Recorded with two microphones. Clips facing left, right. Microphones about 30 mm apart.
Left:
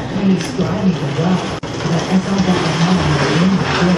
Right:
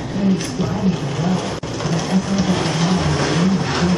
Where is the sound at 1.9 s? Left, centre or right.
Centre.